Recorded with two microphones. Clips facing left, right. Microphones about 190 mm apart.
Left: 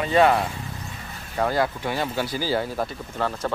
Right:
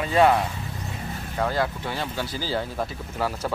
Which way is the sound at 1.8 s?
15° left (ahead or behind).